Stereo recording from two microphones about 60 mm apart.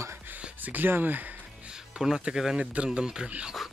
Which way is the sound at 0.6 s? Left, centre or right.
Right.